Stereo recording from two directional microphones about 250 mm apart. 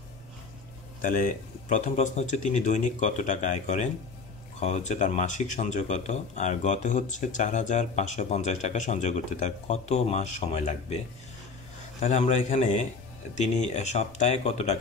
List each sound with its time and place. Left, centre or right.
1.0 s speech: left
12.0 s speech: left